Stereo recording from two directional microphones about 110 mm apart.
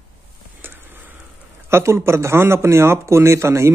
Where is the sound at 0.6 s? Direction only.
20° right (ahead or behind).